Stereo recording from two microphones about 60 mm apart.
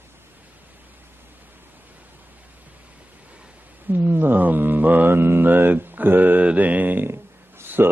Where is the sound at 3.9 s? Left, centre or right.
Right.